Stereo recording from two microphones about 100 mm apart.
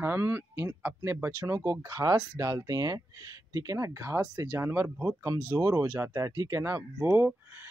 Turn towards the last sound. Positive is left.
turn(degrees=-20)  # may be behind; listen again after turning